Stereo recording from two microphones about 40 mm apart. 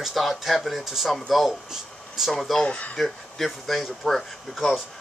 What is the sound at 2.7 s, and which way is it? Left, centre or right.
Speech, left.